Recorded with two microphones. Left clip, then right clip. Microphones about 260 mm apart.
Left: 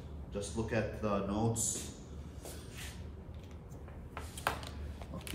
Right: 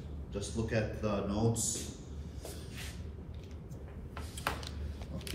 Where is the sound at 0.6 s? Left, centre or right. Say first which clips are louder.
Right 1 dB; centre.